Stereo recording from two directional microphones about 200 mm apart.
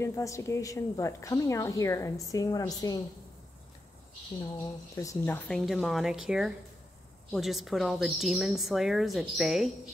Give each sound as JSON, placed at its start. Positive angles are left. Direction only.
{"t": 0.0, "sound": "a woman's voice", "side_deg": 15}
{"t": 4.9, "sound": "a woman's voice", "side_deg": 15}
{"t": 5.7, "sound": "a woman's voice", "side_deg": 0}